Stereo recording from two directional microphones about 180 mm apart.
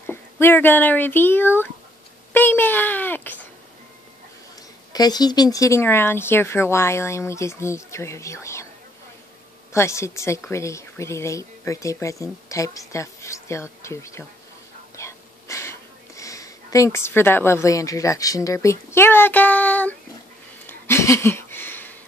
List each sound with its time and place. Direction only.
0.0 s speech: 10° left (ahead or behind)
4.9 s speech: 20° left (ahead or behind)
9.7 s speech: 15° left (ahead or behind)
15.0 s a sound: 15° left (ahead or behind)